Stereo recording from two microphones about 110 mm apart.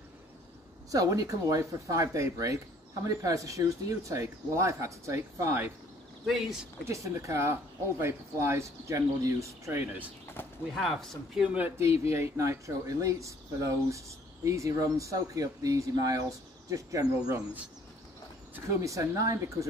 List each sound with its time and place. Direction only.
0.9 s speech: 30° right (ahead or behind)
6.2 s speech: 5° right (ahead or behind)
6.8 s speech: 25° right (ahead or behind)
10.4 s bird: 20° left (ahead or behind)
10.7 s speech: centre (ahead or behind)
11.4 s speech: 15° right (ahead or behind)
12.1 s speech: 25° right (ahead or behind)
18.7 s speech: 30° right (ahead or behind)